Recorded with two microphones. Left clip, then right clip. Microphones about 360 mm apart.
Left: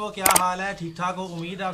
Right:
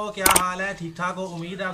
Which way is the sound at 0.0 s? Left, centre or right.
Centre.